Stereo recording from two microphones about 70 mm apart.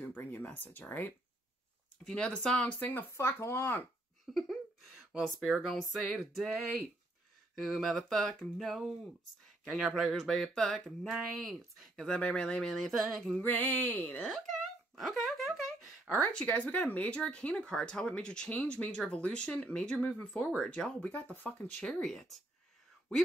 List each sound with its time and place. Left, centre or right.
0.0 s speech: left
2.0 s speech: centre
2.8 s speech: left
3.1 s speech: left
4.3 s a sound: centre
5.4 s speech: centre
7.5 s speech: centre
10.1 s speech: centre
12.1 s speech: centre
13.4 s speech: left
15.0 s speech: centre
16.2 s speech: centre
21.0 s speech: left
22.0 s speech: centre